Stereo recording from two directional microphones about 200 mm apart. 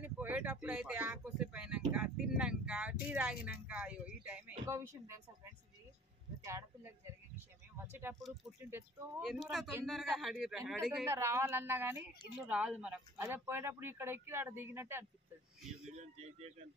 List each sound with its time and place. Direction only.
0.0 s speech: 10° right (ahead or behind)
6.4 s speech: 15° right (ahead or behind)
7.3 s a sound: 10° right (ahead or behind)
9.2 s speech: centre (ahead or behind)
11.1 s speech: 15° right (ahead or behind)
16.0 s a man's voice: 30° right (ahead or behind)